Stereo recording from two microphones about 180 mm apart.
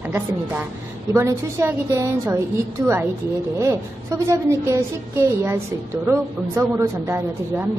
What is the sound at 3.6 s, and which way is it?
A woman's voice, 15° right (ahead or behind).